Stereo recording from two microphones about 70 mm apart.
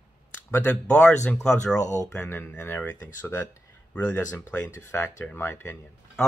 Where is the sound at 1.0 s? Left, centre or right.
Centre.